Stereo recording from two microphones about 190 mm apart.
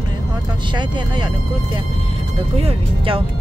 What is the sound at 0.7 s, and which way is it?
Speech, 25° right (ahead or behind).